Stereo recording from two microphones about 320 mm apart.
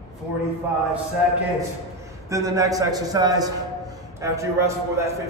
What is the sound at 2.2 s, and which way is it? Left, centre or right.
A man's voice, centre.